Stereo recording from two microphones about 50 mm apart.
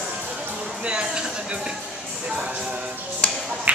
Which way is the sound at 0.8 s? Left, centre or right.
Centre.